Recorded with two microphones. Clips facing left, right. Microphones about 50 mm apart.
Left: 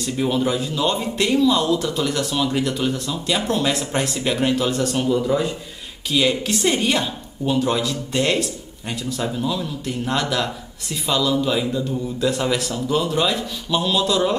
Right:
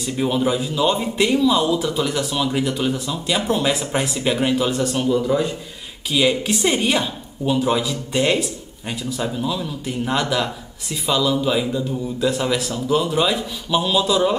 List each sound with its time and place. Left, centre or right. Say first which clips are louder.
0.0 s a man's voice: right 1 dB; centre